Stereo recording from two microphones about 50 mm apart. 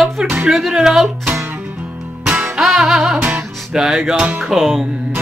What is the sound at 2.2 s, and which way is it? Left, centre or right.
Music, centre.